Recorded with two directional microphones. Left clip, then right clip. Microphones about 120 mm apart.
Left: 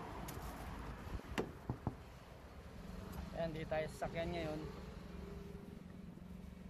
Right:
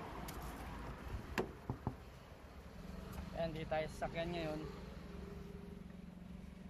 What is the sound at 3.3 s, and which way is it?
Vehicle, 35° left (ahead or behind).